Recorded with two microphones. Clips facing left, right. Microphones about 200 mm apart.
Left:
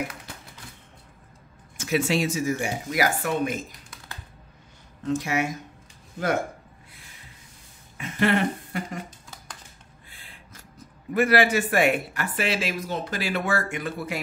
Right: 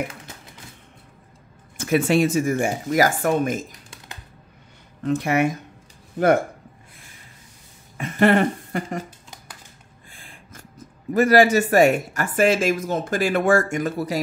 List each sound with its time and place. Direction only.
1.8 s speech: 55° right (ahead or behind)
5.0 s speech: 60° right (ahead or behind)
8.0 s a sound: 50° right (ahead or behind)
10.1 s speech: 45° right (ahead or behind)